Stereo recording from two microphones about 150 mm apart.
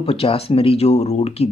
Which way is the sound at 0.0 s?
40° left (ahead or behind).